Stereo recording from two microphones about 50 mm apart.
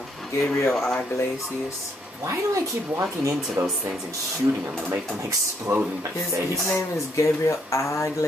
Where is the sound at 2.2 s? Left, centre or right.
Right.